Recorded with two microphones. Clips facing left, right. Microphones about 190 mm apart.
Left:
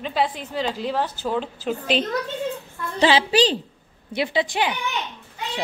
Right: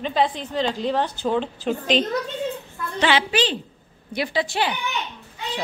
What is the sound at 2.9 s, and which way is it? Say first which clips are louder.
Speech: left 3 dB; 35° left (ahead or behind).